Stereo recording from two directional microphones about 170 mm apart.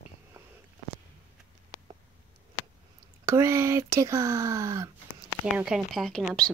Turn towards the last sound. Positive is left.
turn(degrees=0)  # may be behind; listen again after turning